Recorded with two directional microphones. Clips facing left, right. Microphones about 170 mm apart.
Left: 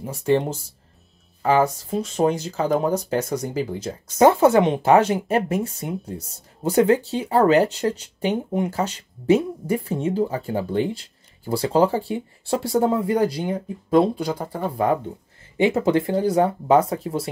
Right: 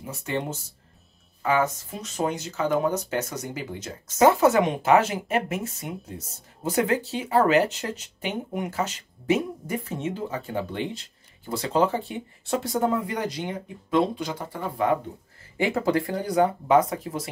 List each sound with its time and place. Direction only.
0.0 s speech: 35° left (ahead or behind)
15.5 s speech: 20° left (ahead or behind)